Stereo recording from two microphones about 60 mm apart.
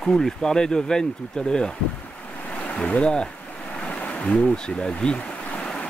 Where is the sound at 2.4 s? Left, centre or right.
Left.